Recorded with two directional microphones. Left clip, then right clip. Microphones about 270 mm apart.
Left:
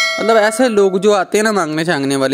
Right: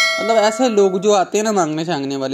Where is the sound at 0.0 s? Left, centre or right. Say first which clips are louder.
Even; centre.